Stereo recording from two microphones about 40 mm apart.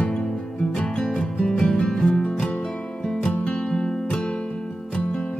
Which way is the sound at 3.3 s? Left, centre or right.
Left.